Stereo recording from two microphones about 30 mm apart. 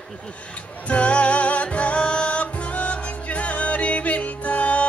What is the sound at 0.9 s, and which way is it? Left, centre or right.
Music, left.